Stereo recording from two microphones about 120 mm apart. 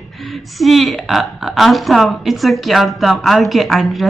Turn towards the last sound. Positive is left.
turn(degrees=0)  # may be behind; listen again after turning